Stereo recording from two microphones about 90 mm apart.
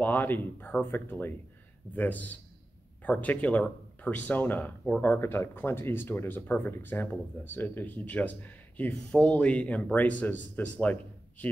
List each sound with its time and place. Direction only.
0.0 s speech: 20° left (ahead or behind)